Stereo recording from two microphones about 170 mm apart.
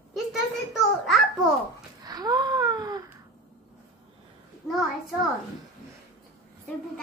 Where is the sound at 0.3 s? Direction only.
Centre (ahead or behind).